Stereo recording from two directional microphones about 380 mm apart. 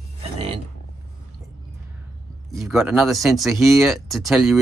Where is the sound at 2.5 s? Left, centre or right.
Centre.